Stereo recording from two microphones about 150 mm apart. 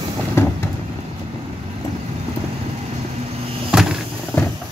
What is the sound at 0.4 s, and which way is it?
Vehicle, 15° left (ahead or behind).